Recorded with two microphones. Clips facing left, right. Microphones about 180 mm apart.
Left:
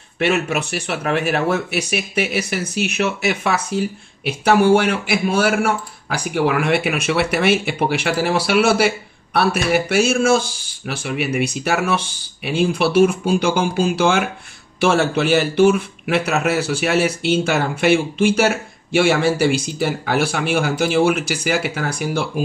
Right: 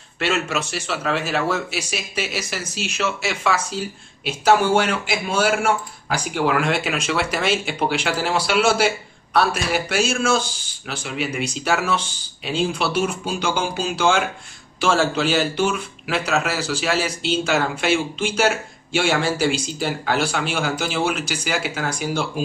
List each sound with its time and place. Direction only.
0.2 s speech: 65° left (ahead or behind)